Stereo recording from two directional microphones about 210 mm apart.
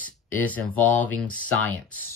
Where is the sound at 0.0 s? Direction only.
5° left (ahead or behind).